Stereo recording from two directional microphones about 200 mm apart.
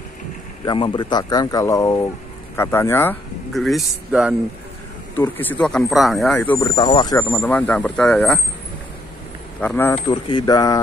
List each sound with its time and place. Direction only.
0.7 s speech: 25° left (ahead or behind)
3.5 s a man's voice: centre (ahead or behind)
5.1 s speech: 10° left (ahead or behind)
6.7 s speech: 20° left (ahead or behind)
7.2 s speech: 5° left (ahead or behind)
9.6 s speech: 10° left (ahead or behind)
10.0 s speech: 20° left (ahead or behind)